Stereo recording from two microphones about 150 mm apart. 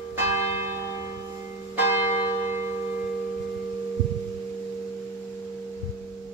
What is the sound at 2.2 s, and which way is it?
Church bell, 40° left (ahead or behind).